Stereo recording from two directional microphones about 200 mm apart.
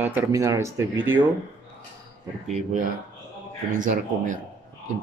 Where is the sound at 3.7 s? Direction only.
40° right (ahead or behind).